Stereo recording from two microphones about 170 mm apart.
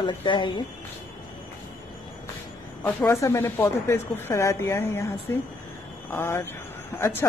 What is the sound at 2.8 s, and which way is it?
A woman's voice, 15° left (ahead or behind).